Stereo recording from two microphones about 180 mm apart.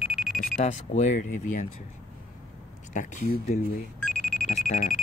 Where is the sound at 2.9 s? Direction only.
45° left (ahead or behind).